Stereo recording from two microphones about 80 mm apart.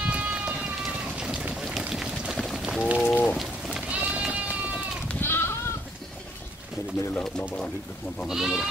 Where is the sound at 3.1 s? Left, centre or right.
Centre.